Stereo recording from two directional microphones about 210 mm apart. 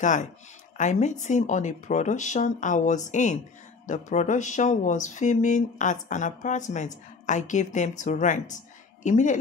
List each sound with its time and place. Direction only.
0.0 s speech: 35° left (ahead or behind)